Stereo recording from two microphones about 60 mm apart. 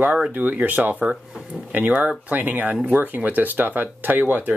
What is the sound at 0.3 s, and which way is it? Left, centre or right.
Speech, right.